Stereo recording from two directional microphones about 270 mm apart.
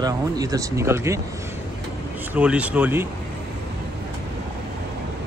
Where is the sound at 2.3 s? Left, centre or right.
Centre.